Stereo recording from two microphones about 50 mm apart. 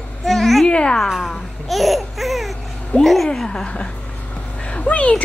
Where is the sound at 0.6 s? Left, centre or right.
Centre.